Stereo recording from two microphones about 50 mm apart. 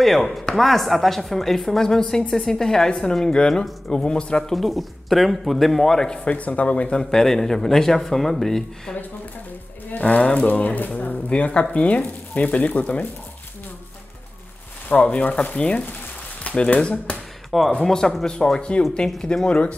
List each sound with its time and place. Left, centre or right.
0.0 s a woman's voice: centre
4.6 s a woman's voice: centre
6.2 s speech: left
7.0 s speech: centre
10.0 s speech: left
14.9 s speech: left
17.5 s speech: centre